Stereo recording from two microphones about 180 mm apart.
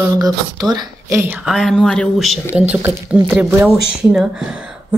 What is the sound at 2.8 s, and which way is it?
Speech, 15° right (ahead or behind).